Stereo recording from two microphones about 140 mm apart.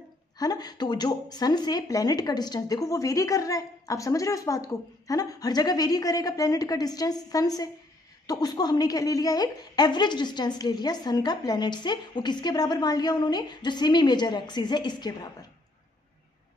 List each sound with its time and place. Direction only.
0.4 s a woman's voice: 30° left (ahead or behind)